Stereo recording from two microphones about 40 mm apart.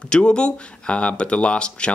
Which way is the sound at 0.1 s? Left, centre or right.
Left.